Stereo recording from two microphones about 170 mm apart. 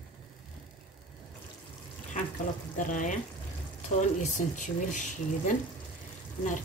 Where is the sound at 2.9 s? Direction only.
50° left (ahead or behind).